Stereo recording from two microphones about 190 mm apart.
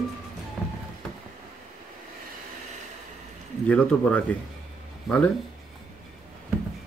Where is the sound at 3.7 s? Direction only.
5° left (ahead or behind).